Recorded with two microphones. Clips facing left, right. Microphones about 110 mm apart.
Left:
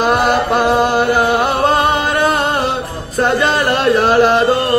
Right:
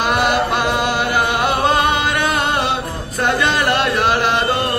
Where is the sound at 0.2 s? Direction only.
35° left (ahead or behind).